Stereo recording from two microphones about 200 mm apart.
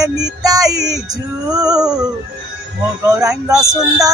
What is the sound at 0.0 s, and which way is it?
Music, 20° right (ahead or behind).